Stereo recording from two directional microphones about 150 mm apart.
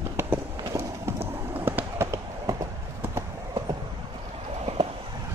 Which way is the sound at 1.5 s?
15° right (ahead or behind).